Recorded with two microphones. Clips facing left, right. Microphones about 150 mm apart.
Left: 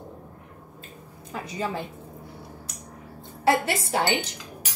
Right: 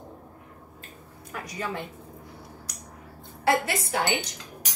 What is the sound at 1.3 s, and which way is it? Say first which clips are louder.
Speech: left 4 dB; 25° left (ahead or behind).